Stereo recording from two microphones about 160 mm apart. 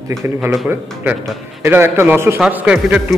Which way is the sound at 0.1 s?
20° right (ahead or behind).